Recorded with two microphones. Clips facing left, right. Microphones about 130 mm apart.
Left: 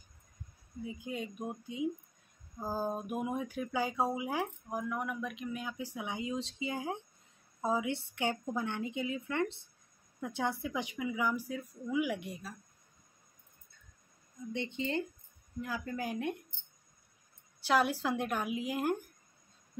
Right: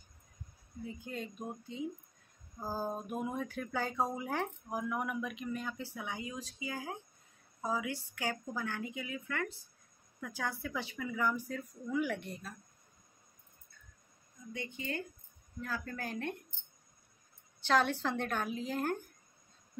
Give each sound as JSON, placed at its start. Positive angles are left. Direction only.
{"t": 0.8, "sound": "speech", "side_deg": 10}
{"t": 4.6, "sound": "a woman's voice", "side_deg": -5}
{"t": 14.5, "sound": "a woman's voice", "side_deg": 25}
{"t": 15.6, "sound": "speech", "side_deg": 15}
{"t": 17.6, "sound": "speech", "side_deg": 10}